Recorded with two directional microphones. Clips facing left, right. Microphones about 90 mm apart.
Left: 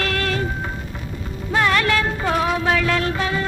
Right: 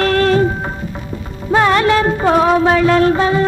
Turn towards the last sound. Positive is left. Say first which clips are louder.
# right 10 dB
turn(degrees=-30)  # may be behind; listen again after turning